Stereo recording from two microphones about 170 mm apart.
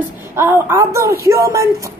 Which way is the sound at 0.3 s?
15° right (ahead or behind).